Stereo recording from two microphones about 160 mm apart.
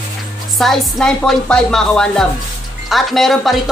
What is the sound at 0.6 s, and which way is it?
Speech, 5° left (ahead or behind).